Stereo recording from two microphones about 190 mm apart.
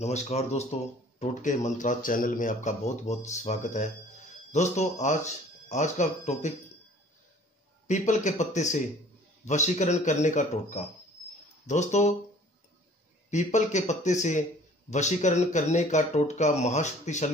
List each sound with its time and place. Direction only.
0.0 s speech: 35° left (ahead or behind)
7.8 s speech: 40° left (ahead or behind)
13.3 s speech: 35° left (ahead or behind)